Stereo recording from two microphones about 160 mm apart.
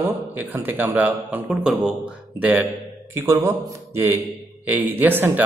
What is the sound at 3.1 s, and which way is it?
Speech, 15° right (ahead or behind).